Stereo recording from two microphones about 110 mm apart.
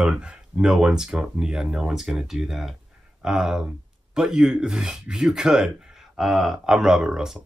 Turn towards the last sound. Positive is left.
turn(degrees=-5)  # may be behind; listen again after turning